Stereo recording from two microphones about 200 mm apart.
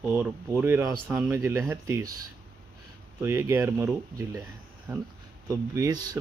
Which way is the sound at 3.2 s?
15° right (ahead or behind).